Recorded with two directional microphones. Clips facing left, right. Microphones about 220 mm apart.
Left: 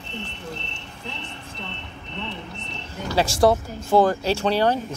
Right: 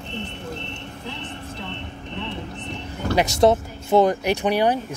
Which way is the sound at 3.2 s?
20° right (ahead or behind).